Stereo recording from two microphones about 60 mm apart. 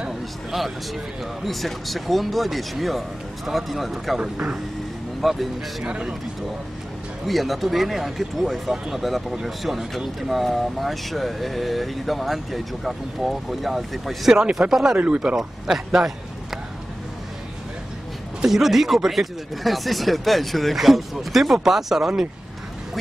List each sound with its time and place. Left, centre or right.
1.4 s speech: centre
4.2 s speech: centre
5.2 s speech: centre
5.9 s speech: centre
7.2 s speech: centre
14.4 s speech: centre
15.0 s speech: centre
15.3 s a man's voice: centre
18.4 s speech: centre